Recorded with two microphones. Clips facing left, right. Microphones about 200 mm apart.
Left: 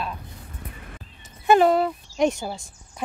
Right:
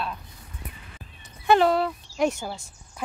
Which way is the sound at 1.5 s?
15° left (ahead or behind).